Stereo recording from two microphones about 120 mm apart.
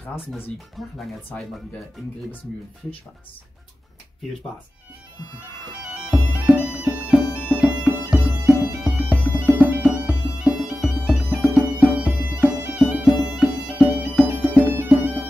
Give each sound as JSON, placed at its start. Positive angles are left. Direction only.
{"t": 0.7, "sound": "speech", "side_deg": 0}
{"t": 6.0, "sound": "bagpipes", "side_deg": -10}
{"t": 8.8, "sound": "music", "side_deg": -10}
{"t": 12.7, "sound": "bagpipes", "side_deg": -5}
{"t": 14.2, "sound": "music", "side_deg": -15}